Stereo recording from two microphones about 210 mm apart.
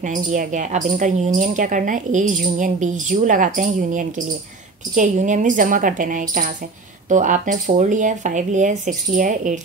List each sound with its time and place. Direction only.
0.0 s speech: 35° right (ahead or behind)